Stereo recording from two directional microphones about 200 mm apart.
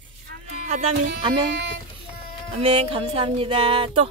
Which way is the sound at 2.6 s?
30° right (ahead or behind).